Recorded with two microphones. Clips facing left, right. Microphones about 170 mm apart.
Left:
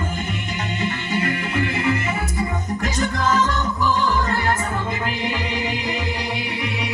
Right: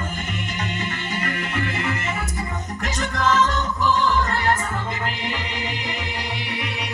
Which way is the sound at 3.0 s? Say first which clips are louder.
Right 1 dB; 35° left (ahead or behind).